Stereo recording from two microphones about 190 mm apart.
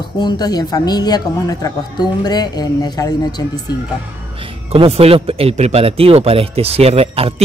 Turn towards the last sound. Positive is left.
turn(degrees=-30)  # may be behind; listen again after turning